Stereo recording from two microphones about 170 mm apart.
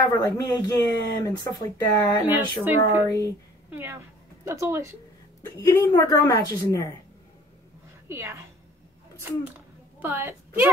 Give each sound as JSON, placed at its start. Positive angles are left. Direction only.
{"t": 0.0, "sound": "speech", "side_deg": 20}
{"t": 2.2, "sound": "speech", "side_deg": -10}
{"t": 5.4, "sound": "speech", "side_deg": 20}
{"t": 8.1, "sound": "speech", "side_deg": -15}
{"t": 9.9, "sound": "a woman's voice", "side_deg": -10}